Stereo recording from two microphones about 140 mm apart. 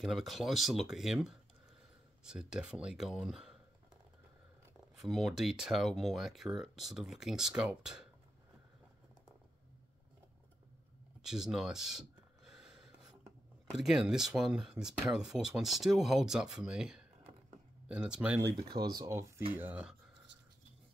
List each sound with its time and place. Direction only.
0.0 s speech: centre (ahead or behind)
4.9 s speech: centre (ahead or behind)
11.2 s a sound: 5° right (ahead or behind)
13.7 s speech: 5° right (ahead or behind)
18.7 s speech: 30° right (ahead or behind)
19.1 s speech: 20° right (ahead or behind)
19.7 s speech: 5° right (ahead or behind)